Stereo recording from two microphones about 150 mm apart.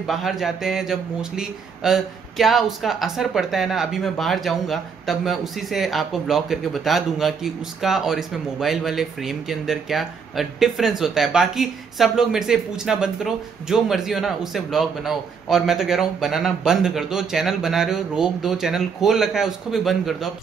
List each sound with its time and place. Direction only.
0.0 s a man's voice: centre (ahead or behind)